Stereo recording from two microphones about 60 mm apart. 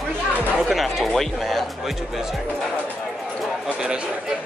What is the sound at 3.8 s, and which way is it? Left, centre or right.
Speech, centre.